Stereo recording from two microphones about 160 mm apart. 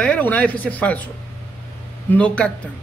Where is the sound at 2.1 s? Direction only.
10° left (ahead or behind).